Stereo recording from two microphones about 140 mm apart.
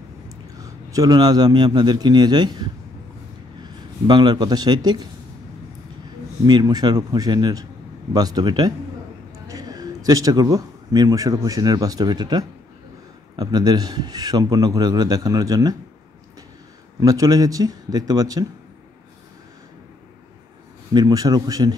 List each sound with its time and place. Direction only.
0.6 s a man's voice: 25° right (ahead or behind)
3.6 s a man's voice: 30° right (ahead or behind)
6.4 s a man's voice: 30° right (ahead or behind)
17.0 s a man's voice: 25° right (ahead or behind)
20.9 s a man's voice: 30° right (ahead or behind)